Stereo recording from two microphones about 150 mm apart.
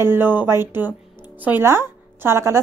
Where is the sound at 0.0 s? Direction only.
15° right (ahead or behind).